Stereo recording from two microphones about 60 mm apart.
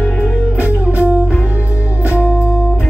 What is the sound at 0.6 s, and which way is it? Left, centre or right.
Music, right.